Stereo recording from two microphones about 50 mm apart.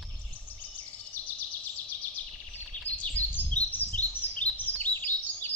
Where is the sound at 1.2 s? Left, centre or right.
Left.